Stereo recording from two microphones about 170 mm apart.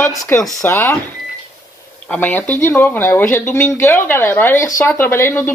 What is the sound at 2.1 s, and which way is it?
Speech, 10° left (ahead or behind).